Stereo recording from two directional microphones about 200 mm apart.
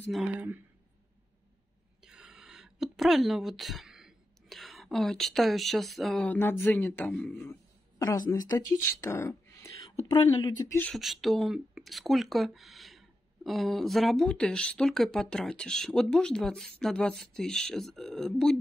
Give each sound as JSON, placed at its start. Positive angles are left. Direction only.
{"t": 0.1, "sound": "speech", "side_deg": -5}
{"t": 2.0, "sound": "a woman's voice", "side_deg": -5}
{"t": 10.8, "sound": "speech", "side_deg": 0}